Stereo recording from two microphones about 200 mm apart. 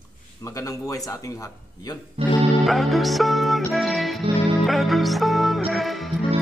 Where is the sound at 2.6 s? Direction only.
Centre (ahead or behind).